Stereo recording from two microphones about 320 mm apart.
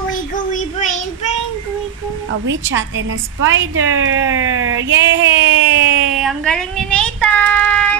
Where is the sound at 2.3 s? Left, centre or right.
Right.